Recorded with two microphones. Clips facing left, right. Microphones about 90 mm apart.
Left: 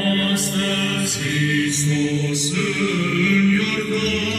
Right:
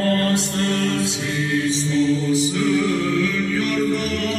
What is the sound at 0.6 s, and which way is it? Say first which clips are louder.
Mantra: right 2 dB; 20° right (ahead or behind).